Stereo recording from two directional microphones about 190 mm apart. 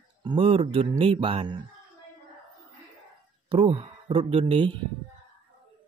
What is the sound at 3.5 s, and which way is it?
Speech, 30° right (ahead or behind).